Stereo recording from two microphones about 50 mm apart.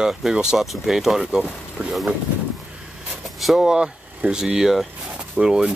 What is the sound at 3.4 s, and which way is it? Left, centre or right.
Vehicle, centre.